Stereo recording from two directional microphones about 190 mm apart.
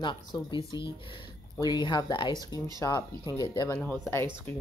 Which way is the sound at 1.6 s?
20° left (ahead or behind).